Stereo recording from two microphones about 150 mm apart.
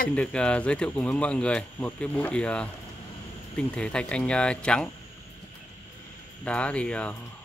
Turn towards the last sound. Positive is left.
turn(degrees=10)  # may be behind; listen again after turning